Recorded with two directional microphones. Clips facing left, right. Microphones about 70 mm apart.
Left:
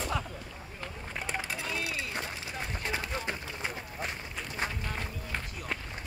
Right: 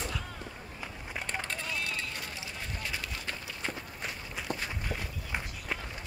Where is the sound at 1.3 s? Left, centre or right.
Centre.